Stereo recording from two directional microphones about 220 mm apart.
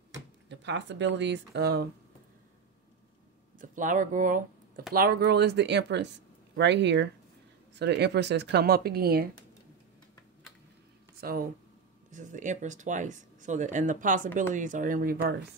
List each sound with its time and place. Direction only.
0.5 s speech: 55° right (ahead or behind)
3.5 s speech: 35° right (ahead or behind)
11.1 s speech: 40° right (ahead or behind)